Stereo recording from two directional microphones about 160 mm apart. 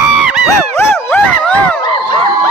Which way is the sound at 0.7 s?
10° left (ahead or behind).